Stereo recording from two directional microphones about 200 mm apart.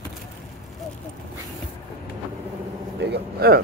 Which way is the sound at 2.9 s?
55° right (ahead or behind).